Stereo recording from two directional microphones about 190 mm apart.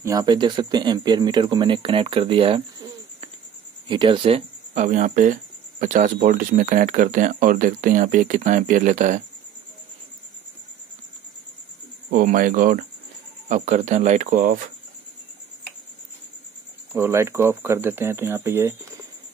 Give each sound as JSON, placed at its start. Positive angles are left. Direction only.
{"t": 0.0, "sound": "speech", "side_deg": -20}
{"t": 12.1, "sound": "speech", "side_deg": -45}
{"t": 16.9, "sound": "speech", "side_deg": -15}